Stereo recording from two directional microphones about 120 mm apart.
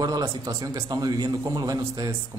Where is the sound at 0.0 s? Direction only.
30° right (ahead or behind).